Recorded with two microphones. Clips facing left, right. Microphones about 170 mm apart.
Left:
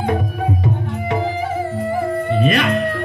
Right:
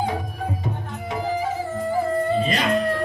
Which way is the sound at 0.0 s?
60° left (ahead or behind).